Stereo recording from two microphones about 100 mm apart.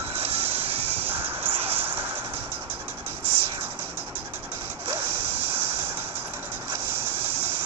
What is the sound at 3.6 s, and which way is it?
Music, 20° right (ahead or behind).